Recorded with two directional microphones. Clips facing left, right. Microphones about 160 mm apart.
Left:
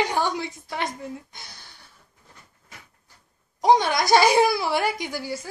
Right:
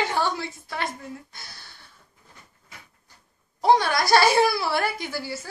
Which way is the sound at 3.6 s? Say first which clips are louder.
Left 1 dB; 20° left (ahead or behind).